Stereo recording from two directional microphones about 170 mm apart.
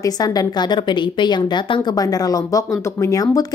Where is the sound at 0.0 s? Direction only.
20° left (ahead or behind).